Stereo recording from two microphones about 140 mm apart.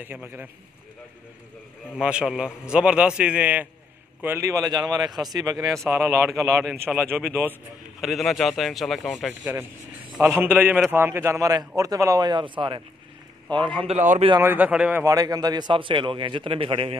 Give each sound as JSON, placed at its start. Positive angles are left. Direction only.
{"t": 0.0, "sound": "a man's voice", "side_deg": -15}
{"t": 2.0, "sound": "a man's voice", "side_deg": -5}
{"t": 5.0, "sound": "speech", "side_deg": 0}
{"t": 5.3, "sound": "a man's voice", "side_deg": -30}
{"t": 5.7, "sound": "a man's voice", "side_deg": 0}
{"t": 13.9, "sound": "a man's voice", "side_deg": -60}
{"t": 14.4, "sound": "a man's voice", "side_deg": -10}
{"t": 15.0, "sound": "a man's voice", "side_deg": -25}